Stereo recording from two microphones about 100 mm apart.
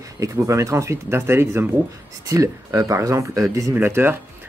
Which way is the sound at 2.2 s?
35° right (ahead or behind).